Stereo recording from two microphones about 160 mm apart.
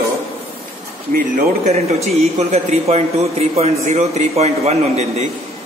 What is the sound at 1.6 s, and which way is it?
A man's voice, 45° right (ahead or behind).